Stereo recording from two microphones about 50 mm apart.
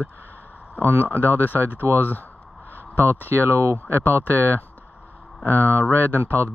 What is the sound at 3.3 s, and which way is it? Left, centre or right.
Speech, right.